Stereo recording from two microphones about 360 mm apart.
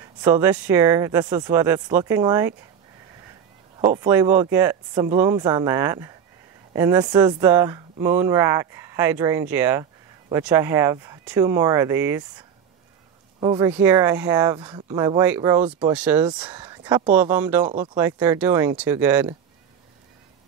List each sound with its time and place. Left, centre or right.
0.2 s speech: centre
3.8 s speech: centre